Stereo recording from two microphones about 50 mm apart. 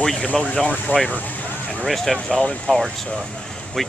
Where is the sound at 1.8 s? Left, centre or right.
Centre.